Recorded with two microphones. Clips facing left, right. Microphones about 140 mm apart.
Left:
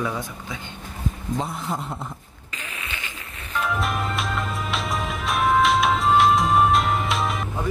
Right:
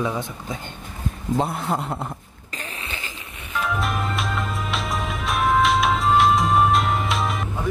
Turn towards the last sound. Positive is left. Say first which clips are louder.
# even
turn(degrees=0)  # may be behind; listen again after turning